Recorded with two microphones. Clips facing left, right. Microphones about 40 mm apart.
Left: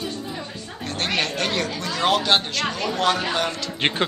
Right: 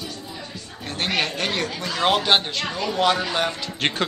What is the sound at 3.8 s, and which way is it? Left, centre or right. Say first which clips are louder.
Speech: left 1 dB; left.